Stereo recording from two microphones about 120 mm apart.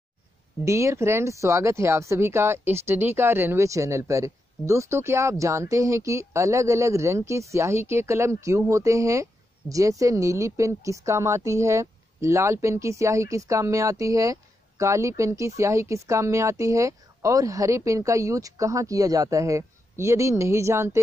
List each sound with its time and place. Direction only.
0.7 s speech: 25° right (ahead or behind)